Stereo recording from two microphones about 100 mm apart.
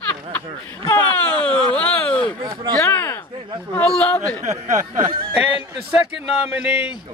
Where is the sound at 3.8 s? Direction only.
10° left (ahead or behind).